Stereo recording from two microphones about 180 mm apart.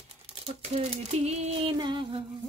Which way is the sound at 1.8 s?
25° right (ahead or behind).